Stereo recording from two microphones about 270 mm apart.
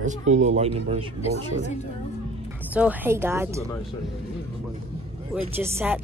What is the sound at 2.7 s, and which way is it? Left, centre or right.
Speech, centre.